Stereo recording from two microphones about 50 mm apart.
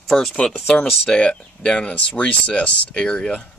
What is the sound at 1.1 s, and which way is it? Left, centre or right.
Speech, left.